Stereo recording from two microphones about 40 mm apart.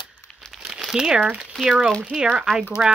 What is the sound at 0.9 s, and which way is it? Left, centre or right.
Speech, centre.